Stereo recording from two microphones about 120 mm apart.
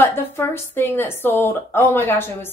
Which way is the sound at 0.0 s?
20° left (ahead or behind).